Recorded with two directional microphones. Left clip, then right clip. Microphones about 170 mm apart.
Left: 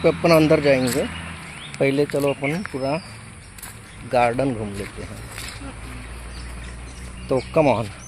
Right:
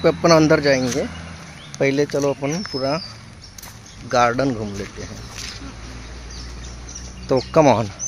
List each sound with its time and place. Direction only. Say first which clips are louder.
0.0 s speech: right 2 dB; 10° right (ahead or behind)
0.6 s speech: even; 5° left (ahead or behind)
4.1 s speech: right 2 dB; 10° right (ahead or behind)
7.2 s speech: right 4 dB; 30° right (ahead or behind)